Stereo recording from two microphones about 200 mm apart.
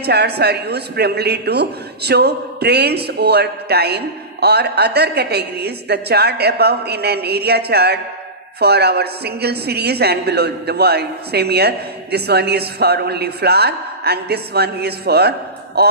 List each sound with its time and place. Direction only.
0.0 s speech: 55° right (ahead or behind)